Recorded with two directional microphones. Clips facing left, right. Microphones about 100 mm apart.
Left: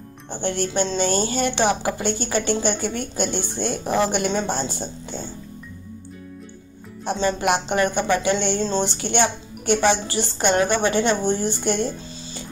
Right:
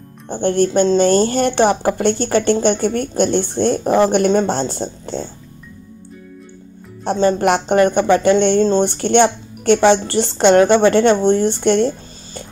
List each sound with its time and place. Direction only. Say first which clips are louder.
0.3 s speech: right 9 dB; 50° right (ahead or behind)
7.1 s a woman's voice: right 6 dB; 50° right (ahead or behind)